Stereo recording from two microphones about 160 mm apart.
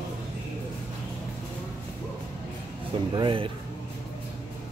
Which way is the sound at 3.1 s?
30° right (ahead or behind).